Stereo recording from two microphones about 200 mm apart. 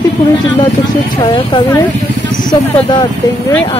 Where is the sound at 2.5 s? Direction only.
20° left (ahead or behind).